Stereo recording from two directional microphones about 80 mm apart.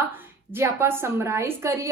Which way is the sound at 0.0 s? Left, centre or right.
Right.